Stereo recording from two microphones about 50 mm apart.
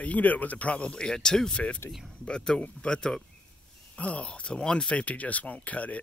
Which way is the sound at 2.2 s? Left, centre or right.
Centre.